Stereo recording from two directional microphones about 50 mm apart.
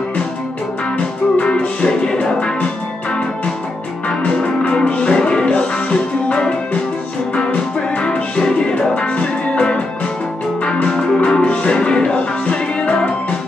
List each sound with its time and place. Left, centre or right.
0.9 s music: left
4.6 s music: left